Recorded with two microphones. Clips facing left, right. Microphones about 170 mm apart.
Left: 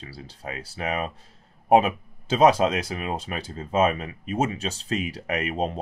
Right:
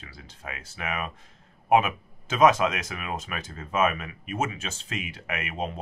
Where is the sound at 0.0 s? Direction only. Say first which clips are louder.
Left 5 dB; 35° left (ahead or behind).